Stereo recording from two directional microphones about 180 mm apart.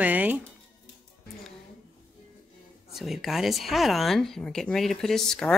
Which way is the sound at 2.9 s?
Centre (ahead or behind).